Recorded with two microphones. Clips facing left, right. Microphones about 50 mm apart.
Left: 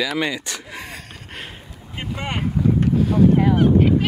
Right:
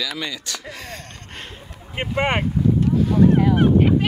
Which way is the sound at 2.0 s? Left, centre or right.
Right.